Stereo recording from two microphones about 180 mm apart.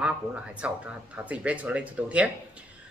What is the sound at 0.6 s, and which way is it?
Speech, 5° right (ahead or behind).